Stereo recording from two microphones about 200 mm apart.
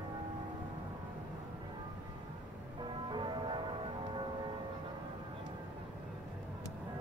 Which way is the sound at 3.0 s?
25° right (ahead or behind).